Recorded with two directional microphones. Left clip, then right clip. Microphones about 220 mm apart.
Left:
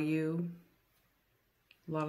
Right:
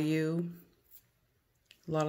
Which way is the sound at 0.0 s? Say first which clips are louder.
Right 2 dB; 25° right (ahead or behind).